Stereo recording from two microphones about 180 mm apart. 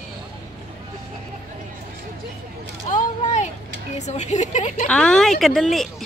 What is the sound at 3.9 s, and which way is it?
Speech, 40° left (ahead or behind).